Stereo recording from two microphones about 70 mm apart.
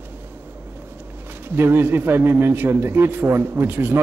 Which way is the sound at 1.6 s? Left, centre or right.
Right.